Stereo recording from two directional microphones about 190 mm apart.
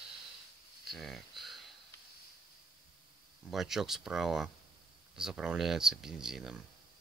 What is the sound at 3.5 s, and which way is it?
Speech, centre (ahead or behind).